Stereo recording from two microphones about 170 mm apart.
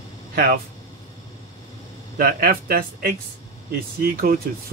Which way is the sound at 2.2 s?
60° right (ahead or behind).